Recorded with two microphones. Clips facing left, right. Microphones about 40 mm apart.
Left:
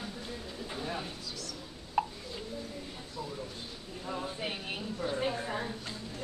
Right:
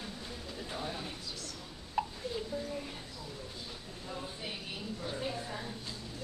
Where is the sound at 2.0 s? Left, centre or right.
Centre.